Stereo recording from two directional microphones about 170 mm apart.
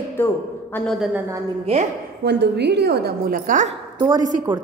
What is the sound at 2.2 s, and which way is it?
A woman's voice, 80° right.